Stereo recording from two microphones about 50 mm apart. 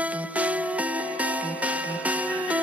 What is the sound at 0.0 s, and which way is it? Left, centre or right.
Music, right.